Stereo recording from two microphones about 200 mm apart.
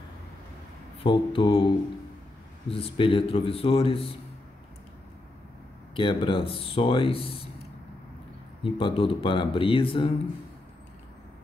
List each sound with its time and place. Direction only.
1.0 s speech: 25° left (ahead or behind)
2.7 s speech: 25° left (ahead or behind)
5.9 s speech: 25° left (ahead or behind)
8.6 s speech: 25° left (ahead or behind)